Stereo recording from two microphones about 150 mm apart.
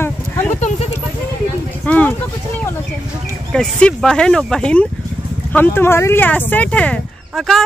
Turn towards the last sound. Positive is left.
turn(degrees=0)  # may be behind; listen again after turning